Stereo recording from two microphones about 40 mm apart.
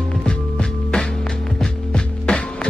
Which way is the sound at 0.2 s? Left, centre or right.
Left.